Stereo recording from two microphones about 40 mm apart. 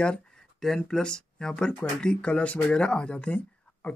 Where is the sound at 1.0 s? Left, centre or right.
Centre.